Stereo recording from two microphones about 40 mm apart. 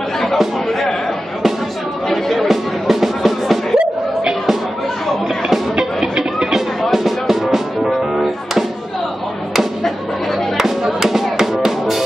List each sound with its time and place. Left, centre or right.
2.0 s chatter: centre
2.4 s music: centre
3.7 s music: right
6.1 s a sound: centre
6.9 s music: centre
10.6 s music: centre